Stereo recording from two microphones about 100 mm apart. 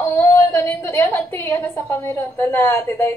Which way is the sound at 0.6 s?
25° left (ahead or behind).